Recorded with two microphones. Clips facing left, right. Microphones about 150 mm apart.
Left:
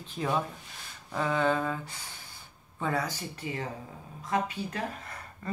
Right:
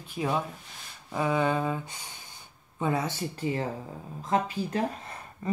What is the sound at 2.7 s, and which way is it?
Speech, 20° right (ahead or behind).